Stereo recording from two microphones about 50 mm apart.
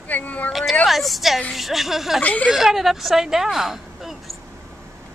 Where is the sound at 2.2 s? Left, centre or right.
Left.